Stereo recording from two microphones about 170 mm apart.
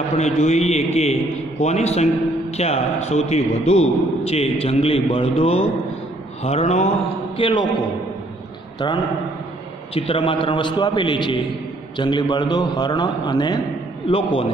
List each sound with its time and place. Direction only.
0.1 s a man's voice: 40° left (ahead or behind)
8.7 s a man's voice: 25° left (ahead or behind)